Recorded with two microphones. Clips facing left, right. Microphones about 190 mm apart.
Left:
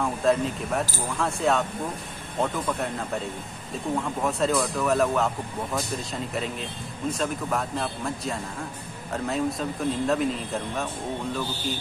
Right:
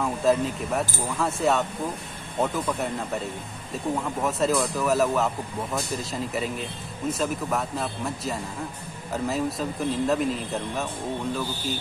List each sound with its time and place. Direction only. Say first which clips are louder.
0.0 s speech: right 1 dB; centre (ahead or behind)
4.2 s speech: right 1 dB; centre (ahead or behind)